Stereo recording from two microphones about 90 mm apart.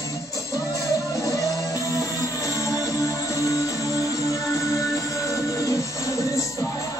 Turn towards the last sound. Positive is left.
turn(degrees=35)  # may be behind; listen again after turning